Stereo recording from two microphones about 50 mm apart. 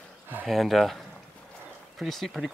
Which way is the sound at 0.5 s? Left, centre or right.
Centre.